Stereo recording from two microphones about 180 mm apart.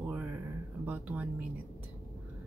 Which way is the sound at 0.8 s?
10° right (ahead or behind).